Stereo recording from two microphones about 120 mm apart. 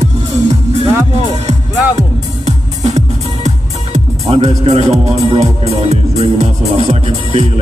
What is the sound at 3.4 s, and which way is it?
Speech, 70° right (ahead or behind).